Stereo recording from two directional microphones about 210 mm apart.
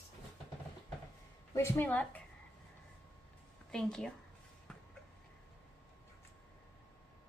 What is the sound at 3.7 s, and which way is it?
Speech, 5° left (ahead or behind).